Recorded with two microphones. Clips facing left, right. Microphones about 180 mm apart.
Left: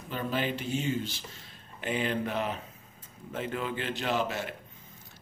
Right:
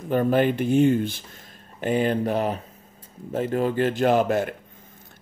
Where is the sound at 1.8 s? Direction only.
45° right (ahead or behind).